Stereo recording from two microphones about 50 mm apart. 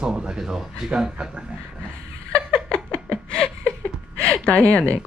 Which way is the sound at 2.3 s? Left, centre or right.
Left.